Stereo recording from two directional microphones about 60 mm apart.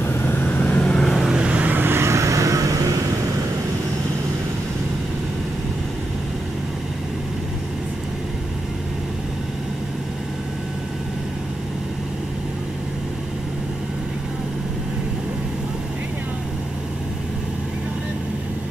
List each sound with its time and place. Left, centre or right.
0.0 s vehicle: left
0.8 s vehicle: centre
1.3 s vehicle: centre
1.8 s vehicle: right